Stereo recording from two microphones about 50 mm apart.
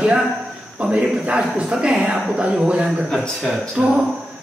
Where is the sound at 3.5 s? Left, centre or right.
Centre.